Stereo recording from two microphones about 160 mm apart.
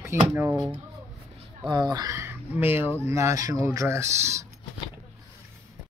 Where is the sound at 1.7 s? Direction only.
25° right (ahead or behind).